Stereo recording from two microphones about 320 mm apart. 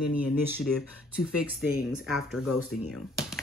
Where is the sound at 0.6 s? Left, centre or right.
Centre.